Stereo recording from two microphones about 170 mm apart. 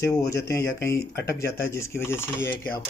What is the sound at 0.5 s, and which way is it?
Speech, 20° left (ahead or behind).